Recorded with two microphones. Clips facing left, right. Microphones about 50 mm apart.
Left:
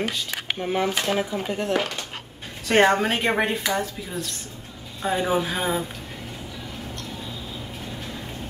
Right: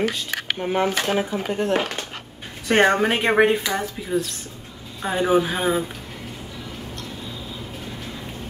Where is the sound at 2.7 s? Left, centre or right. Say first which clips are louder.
Right 1 dB; centre.